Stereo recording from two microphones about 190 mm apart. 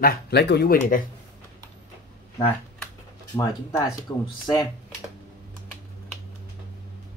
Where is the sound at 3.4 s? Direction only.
15° left (ahead or behind).